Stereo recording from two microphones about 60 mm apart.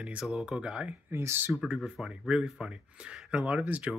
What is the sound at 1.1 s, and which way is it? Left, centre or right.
Speech, right.